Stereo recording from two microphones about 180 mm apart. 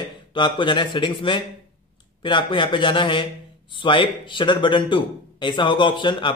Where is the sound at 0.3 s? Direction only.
25° left (ahead or behind).